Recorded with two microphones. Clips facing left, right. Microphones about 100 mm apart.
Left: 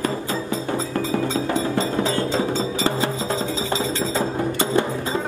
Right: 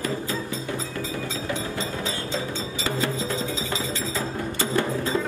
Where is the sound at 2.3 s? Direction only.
35° left (ahead or behind).